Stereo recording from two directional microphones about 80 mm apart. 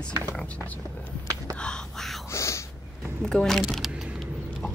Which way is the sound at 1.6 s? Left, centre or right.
Centre.